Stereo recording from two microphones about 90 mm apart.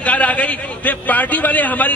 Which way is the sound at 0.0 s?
15° left (ahead or behind).